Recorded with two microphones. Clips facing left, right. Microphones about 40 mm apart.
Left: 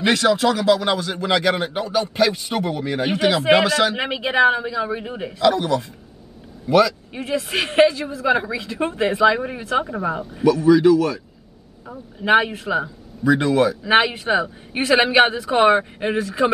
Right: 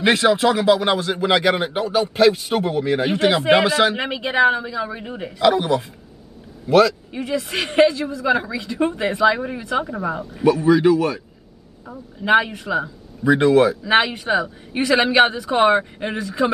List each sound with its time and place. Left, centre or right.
0.0 s speech: centre
3.9 s speech: centre
5.4 s speech: centre
6.7 s a man's voice: centre
10.4 s speech: right
12.2 s a man's voice: centre
13.2 s speech: centre
13.8 s a man's voice: centre